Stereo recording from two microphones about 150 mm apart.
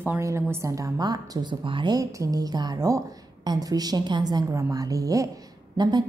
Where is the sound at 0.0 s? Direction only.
15° right (ahead or behind).